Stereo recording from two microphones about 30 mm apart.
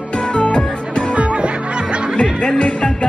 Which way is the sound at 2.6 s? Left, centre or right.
Left.